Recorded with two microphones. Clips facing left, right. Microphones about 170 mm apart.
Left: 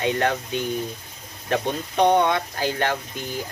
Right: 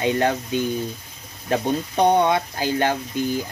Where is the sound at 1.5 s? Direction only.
15° right (ahead or behind).